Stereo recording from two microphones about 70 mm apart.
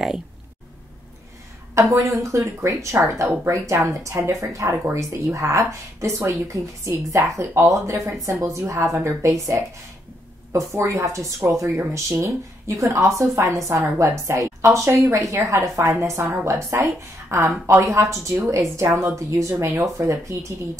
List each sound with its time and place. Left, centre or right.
1.8 s a woman's voice: right